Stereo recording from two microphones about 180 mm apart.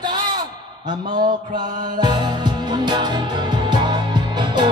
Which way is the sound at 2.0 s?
25° right (ahead or behind).